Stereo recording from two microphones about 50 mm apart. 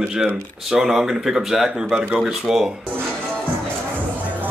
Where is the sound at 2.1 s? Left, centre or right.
Centre.